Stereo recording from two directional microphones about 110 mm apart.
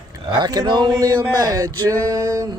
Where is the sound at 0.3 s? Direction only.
40° right (ahead or behind).